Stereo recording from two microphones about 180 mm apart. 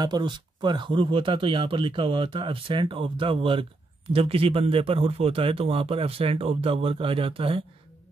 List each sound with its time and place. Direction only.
0.0 s speech: 25° right (ahead or behind)